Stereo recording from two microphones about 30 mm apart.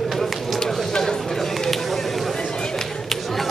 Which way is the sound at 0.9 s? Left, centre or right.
Centre.